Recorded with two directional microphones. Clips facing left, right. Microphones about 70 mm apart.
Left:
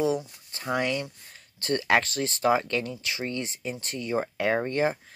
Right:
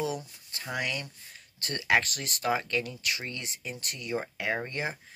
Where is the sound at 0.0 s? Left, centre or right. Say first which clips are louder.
Left 7 dB; left.